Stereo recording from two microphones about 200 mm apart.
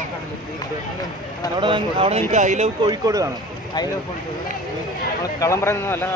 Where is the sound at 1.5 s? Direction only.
25° right (ahead or behind).